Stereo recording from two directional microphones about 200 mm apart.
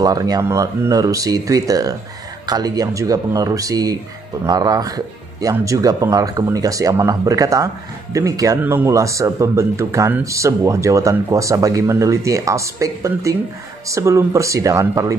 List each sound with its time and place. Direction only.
0.0 s speech: 20° right (ahead or behind)